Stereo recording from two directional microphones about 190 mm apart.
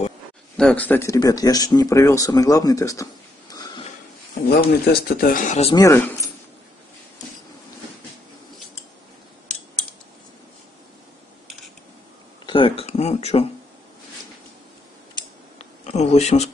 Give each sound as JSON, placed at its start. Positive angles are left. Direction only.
{"t": 0.6, "sound": "speech", "side_deg": 5}
{"t": 4.5, "sound": "speech", "side_deg": 55}
{"t": 5.7, "sound": "speech", "side_deg": 15}
{"t": 12.4, "sound": "a sound", "side_deg": 25}
{"t": 15.8, "sound": "speech", "side_deg": 35}